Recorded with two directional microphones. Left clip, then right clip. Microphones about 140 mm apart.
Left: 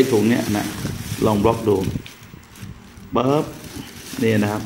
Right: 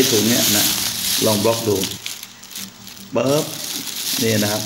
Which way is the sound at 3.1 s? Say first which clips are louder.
Right 1 dB; 15° left (ahead or behind).